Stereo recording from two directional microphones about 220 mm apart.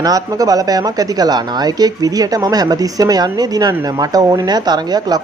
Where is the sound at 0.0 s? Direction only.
15° right (ahead or behind).